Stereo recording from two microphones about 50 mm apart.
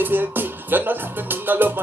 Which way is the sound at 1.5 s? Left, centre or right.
Right.